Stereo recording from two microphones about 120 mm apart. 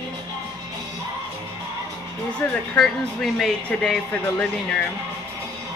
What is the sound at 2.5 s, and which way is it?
Speech, 10° left (ahead or behind).